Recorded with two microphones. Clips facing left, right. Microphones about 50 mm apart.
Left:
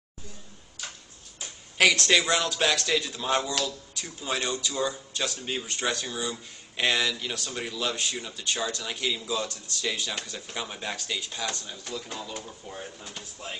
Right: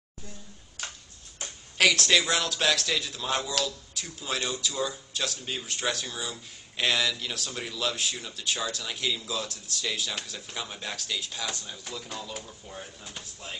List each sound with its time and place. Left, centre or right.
1.8 s speech: centre